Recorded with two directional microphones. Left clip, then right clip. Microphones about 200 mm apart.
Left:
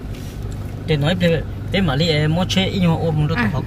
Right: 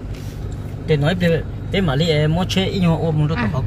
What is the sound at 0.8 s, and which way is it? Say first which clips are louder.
Speech: even; 55° right (ahead or behind).